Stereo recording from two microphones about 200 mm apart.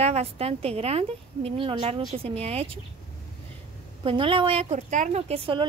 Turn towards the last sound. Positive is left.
turn(degrees=-25)  # may be behind; listen again after turning